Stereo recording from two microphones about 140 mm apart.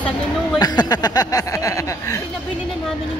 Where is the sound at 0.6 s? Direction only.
30° left (ahead or behind).